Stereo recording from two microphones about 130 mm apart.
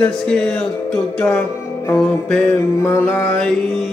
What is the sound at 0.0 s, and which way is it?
Mantra, 10° left (ahead or behind).